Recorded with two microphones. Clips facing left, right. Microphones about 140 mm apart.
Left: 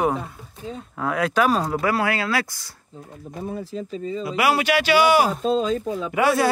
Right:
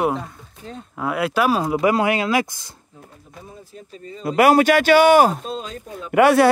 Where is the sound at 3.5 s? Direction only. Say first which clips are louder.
Left 12 dB; 90° left.